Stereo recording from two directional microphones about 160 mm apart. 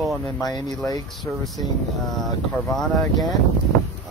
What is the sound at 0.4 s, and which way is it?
Speech, 25° left (ahead or behind).